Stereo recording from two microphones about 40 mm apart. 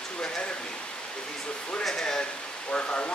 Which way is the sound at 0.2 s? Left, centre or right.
Left.